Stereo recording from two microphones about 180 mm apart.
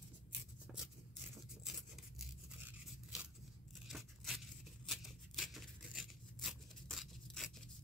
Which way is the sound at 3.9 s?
Centre (ahead or behind).